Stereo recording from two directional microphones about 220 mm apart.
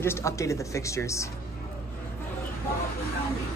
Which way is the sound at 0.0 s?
10° left (ahead or behind).